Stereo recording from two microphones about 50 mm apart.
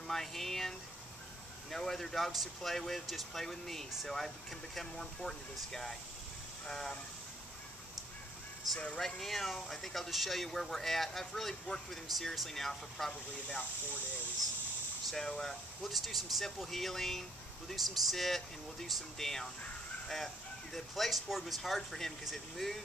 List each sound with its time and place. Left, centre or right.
0.1 s speech: centre
8.7 s speech: centre
9.0 s speech: centre
15.2 s speech: centre
15.8 s speech: centre
20.7 s speech: centre